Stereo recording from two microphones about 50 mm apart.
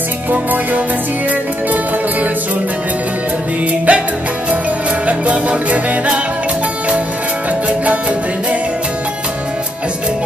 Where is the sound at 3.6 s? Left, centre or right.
Right.